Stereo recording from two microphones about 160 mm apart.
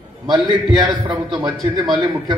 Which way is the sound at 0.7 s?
30° right (ahead or behind).